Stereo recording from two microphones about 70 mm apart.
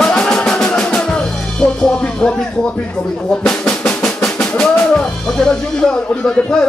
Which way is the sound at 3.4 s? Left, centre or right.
Centre.